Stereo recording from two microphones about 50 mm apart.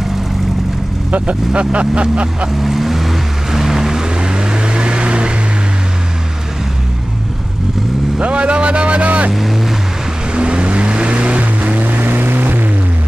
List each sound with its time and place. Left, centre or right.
1.1 s speech: right
2.6 s vehicle: centre
8.2 s speech: right
9.3 s speech: centre
10.3 s vehicle: right